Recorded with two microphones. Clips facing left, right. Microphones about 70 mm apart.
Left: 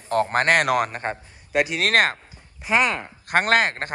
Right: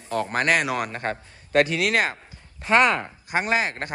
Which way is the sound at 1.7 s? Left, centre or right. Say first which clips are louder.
Left 3 dB; left.